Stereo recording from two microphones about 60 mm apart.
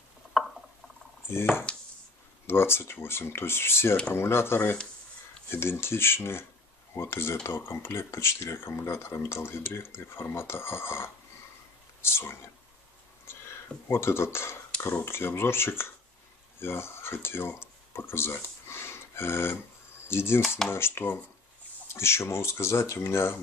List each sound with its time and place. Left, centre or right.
1.7 s a sound: centre
2.4 s speech: left
13.3 s a sound: left
13.8 s speech: left
20.1 s dishes: left
20.4 s dishes: centre
20.7 s speech: left